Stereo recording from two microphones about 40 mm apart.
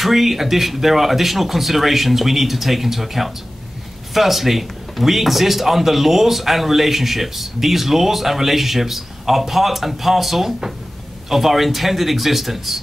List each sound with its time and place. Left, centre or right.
0.0 s speech: centre